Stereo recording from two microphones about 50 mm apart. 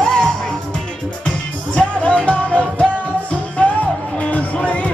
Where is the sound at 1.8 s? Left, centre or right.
Left.